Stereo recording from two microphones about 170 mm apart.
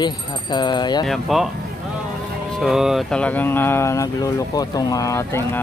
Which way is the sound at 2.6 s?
Centre (ahead or behind).